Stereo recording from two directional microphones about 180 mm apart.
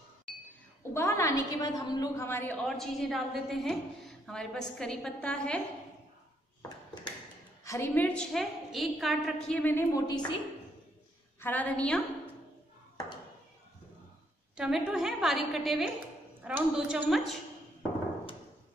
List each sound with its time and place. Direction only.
0.3 s a sound: 5° left (ahead or behind)
0.9 s a woman's voice: 15° left (ahead or behind)
7.6 s a woman's voice: 15° left (ahead or behind)
10.0 s a woman's voice: 25° left (ahead or behind)
11.4 s a woman's voice: 10° left (ahead or behind)
14.6 s a woman's voice: centre (ahead or behind)